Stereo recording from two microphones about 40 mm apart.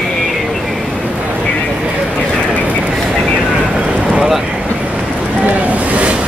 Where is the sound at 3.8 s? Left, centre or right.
Right.